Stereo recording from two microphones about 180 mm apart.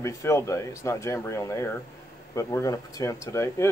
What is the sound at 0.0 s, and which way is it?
Speech, 15° left (ahead or behind).